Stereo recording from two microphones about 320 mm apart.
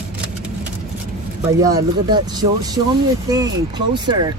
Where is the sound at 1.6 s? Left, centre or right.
Centre.